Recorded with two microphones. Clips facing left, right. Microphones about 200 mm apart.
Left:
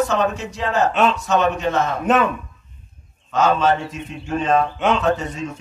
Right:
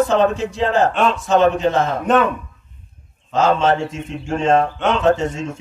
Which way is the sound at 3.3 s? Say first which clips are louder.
Right 1 dB; 25° right (ahead or behind).